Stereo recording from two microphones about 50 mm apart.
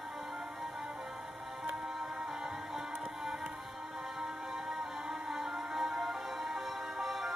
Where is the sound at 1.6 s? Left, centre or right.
Centre.